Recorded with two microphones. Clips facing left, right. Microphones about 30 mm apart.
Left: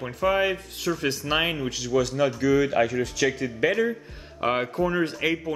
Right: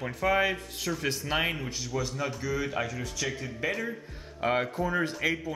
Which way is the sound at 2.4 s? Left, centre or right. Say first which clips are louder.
Left 12 dB; left.